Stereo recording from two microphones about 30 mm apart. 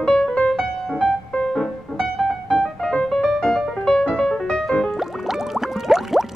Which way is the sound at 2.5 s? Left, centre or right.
Centre.